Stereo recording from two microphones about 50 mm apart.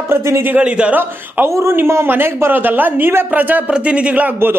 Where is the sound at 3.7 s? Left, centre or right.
Right.